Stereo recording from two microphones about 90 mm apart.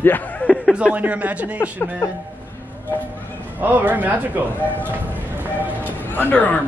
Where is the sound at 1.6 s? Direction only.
25° left (ahead or behind).